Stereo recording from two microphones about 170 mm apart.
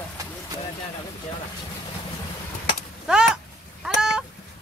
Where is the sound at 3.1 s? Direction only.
5° right (ahead or behind).